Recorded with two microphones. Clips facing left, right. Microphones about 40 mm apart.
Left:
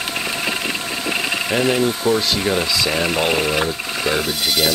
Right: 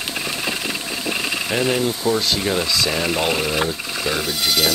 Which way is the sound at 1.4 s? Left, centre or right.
Centre.